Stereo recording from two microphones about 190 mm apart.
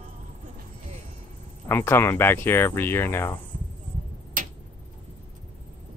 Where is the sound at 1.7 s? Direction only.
10° left (ahead or behind).